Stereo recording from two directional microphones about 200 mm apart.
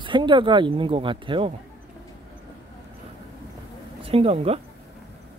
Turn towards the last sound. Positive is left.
turn(degrees=-30)  # may be behind; listen again after turning